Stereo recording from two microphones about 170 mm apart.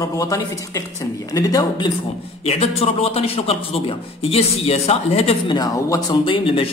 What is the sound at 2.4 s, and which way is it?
A man's voice, 35° left (ahead or behind).